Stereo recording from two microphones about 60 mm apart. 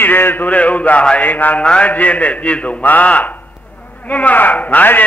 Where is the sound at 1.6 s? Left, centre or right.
Centre.